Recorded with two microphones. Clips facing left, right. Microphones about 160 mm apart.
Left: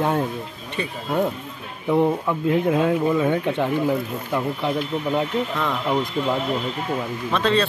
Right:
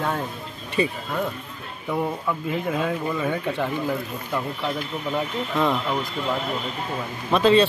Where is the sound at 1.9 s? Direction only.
20° left (ahead or behind).